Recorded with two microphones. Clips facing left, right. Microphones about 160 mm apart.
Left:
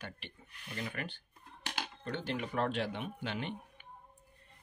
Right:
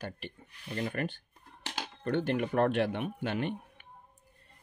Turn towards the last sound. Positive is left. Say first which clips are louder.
# right 6 dB
turn(degrees=-55)  # may be behind; listen again after turning